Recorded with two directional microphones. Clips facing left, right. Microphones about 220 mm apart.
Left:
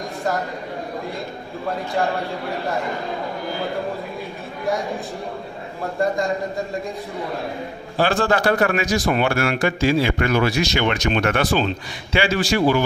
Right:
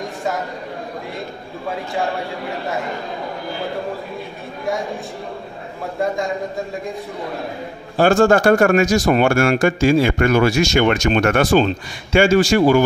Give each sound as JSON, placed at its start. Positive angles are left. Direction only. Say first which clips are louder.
{"t": 5.9, "sound": "a man's voice", "louder": "even", "side_deg": 0}
{"t": 8.0, "sound": "speech", "louder": "right 6 dB", "side_deg": -45}